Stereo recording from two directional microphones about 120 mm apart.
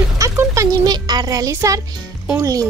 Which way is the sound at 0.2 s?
25° right (ahead or behind).